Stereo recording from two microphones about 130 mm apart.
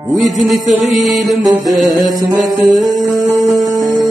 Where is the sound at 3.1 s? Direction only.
25° right (ahead or behind).